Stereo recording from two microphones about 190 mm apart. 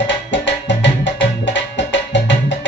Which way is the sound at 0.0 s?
70° left (ahead or behind).